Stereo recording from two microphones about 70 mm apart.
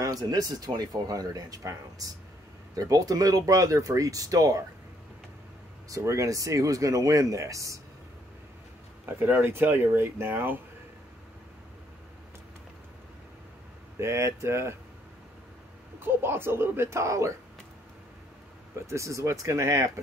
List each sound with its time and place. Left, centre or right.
0.0 s speech: right
5.9 s speech: right
9.2 s speech: right
13.9 s speech: right
16.0 s speech: right
18.9 s speech: right